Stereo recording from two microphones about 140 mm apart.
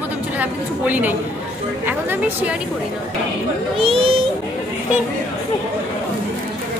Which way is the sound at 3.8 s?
45° right (ahead or behind).